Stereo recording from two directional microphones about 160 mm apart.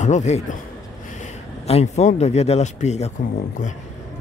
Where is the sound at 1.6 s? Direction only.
40° left (ahead or behind).